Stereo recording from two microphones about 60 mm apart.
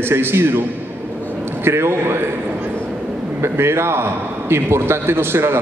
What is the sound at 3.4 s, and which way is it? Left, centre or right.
A man's voice, right.